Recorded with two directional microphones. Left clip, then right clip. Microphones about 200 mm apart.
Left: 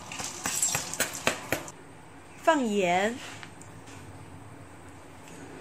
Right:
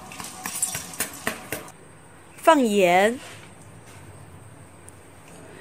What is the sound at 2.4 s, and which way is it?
Speech, 50° right (ahead or behind).